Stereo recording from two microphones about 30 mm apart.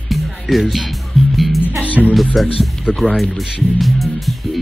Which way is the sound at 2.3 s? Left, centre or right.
Centre.